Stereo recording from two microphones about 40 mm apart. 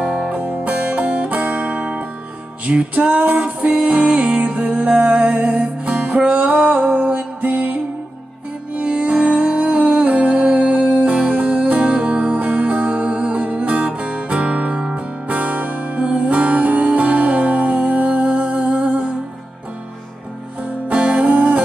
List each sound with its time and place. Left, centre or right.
0.0 s music: right
0.3 s music: right
4.8 s music: right
8.8 s music: right
20.9 s music: right